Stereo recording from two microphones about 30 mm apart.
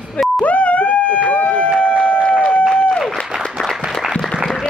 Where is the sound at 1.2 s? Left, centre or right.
Left.